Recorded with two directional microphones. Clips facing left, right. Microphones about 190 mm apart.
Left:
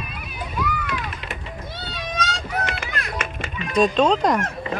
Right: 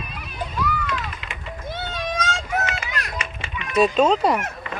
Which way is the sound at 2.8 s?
45° left (ahead or behind).